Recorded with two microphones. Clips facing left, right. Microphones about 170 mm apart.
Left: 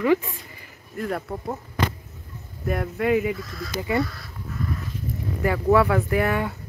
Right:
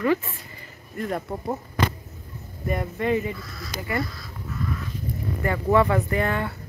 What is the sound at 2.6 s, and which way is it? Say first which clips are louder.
Speech: left 2 dB; centre (ahead or behind).